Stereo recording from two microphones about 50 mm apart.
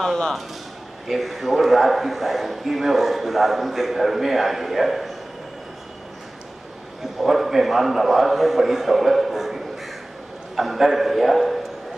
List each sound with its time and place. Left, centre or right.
0.0 s a man's voice: centre
7.2 s a man's voice: centre